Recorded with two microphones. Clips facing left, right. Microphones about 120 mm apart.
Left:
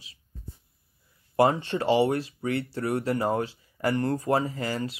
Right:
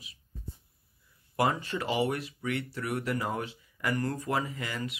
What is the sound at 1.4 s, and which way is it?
Speech, 30° left (ahead or behind).